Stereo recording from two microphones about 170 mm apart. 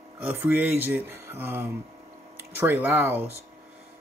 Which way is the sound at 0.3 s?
10° right (ahead or behind).